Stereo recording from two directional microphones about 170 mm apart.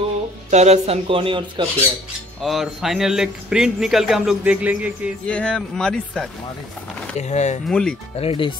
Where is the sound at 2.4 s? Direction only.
Centre (ahead or behind).